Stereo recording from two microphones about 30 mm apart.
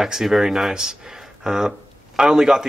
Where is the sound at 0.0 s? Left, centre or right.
Centre.